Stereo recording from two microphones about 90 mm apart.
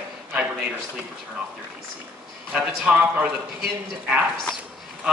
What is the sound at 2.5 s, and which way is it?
Speech, 15° right (ahead or behind).